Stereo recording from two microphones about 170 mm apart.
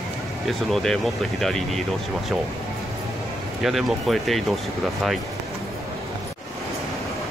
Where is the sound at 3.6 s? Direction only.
Centre (ahead or behind).